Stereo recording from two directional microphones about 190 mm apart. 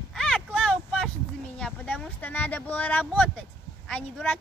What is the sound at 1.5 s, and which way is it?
A child's voice, 5° left (ahead or behind).